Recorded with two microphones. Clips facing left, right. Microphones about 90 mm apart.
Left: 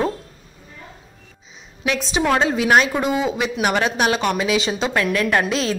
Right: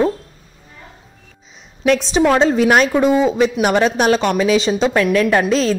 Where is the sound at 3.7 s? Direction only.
5° left (ahead or behind).